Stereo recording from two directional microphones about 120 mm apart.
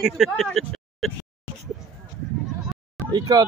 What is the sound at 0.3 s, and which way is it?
Speech, 5° left (ahead or behind).